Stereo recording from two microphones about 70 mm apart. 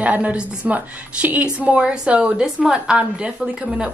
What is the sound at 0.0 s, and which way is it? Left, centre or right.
A woman's voice, right.